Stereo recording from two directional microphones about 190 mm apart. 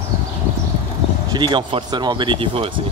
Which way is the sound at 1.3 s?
25° right (ahead or behind).